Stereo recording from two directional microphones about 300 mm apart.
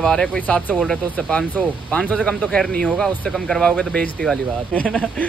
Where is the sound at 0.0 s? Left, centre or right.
Centre.